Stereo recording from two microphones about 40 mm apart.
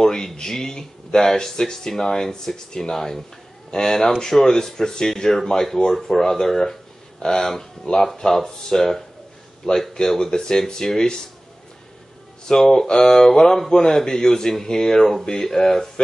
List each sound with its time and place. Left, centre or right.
0.0 s speech: centre
12.4 s speech: centre